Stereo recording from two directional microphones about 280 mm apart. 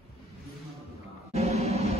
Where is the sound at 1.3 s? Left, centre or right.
Right.